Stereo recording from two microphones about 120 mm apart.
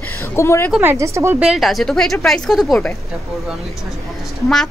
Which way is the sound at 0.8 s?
25° right (ahead or behind).